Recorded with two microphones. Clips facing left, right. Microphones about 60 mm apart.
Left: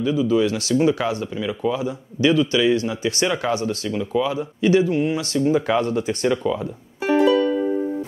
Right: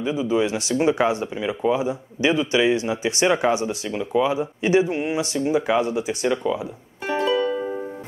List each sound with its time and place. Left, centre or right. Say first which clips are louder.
0.0 s speech: left 3 dB; right
5.5 s speech: left 1 dB; centre
7.1 s music: left 6 dB; centre
7.3 s music: left 4 dB; centre